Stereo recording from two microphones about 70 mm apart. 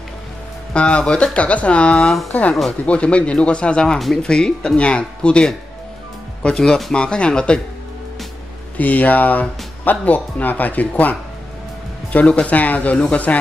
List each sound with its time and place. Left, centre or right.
0.7 s speech: centre
8.7 s speech: left